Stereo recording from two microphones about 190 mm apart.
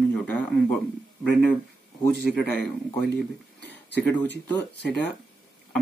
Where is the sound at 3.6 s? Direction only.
65° left (ahead or behind).